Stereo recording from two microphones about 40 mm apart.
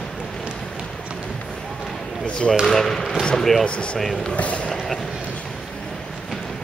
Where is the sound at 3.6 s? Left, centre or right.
Left.